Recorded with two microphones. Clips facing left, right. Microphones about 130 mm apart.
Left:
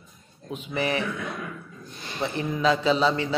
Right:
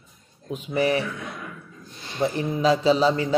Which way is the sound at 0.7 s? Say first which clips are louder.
Right 4 dB; 35° right (ahead or behind).